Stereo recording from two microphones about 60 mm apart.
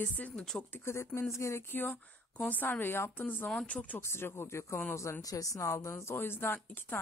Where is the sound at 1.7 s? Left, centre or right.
Left.